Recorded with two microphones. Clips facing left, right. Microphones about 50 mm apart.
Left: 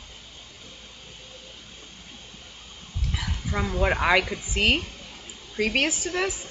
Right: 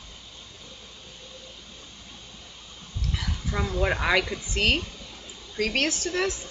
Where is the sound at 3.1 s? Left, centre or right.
Centre.